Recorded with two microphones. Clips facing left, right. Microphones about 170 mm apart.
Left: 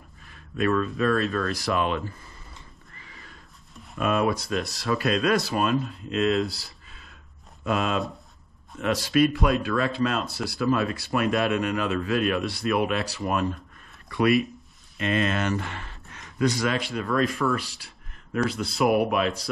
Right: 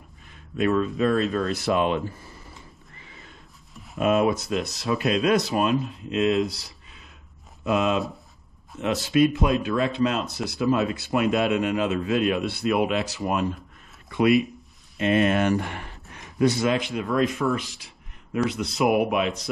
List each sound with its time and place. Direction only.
0.6 s speech: 20° right (ahead or behind)
3.0 s horse: 20° right (ahead or behind)
4.0 s speech: 20° right (ahead or behind)
8.8 s speech: 20° right (ahead or behind)
18.3 s speech: 5° right (ahead or behind)